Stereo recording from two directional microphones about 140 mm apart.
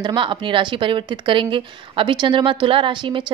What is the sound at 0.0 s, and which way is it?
Speech, 35° right (ahead or behind).